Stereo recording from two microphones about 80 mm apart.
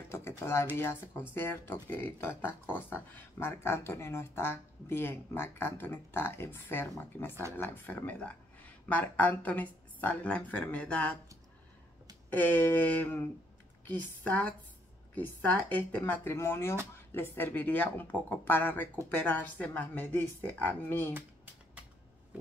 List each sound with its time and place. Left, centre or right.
0.4 s speech: left
12.3 s speech: left
14.2 s speech: centre
16.3 s speech: left